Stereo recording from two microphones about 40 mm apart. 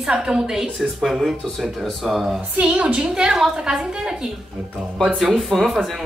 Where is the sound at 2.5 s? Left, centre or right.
Right.